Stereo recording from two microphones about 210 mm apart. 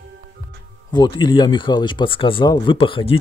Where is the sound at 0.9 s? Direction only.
20° left (ahead or behind).